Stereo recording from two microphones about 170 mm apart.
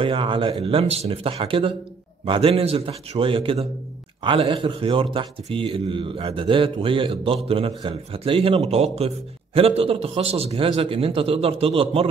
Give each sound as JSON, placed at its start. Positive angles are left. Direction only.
{"t": 0.0, "sound": "a man's voice", "side_deg": -30}